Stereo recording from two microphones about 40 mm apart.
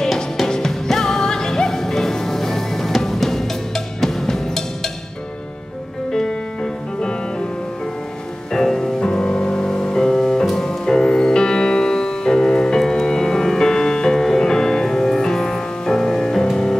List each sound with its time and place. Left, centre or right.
0.0 s music: centre
6.1 s music: centre
8.5 s music: centre
9.0 s music: centre